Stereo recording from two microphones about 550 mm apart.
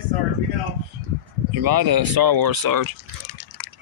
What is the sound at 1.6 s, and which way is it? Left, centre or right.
Speech, right.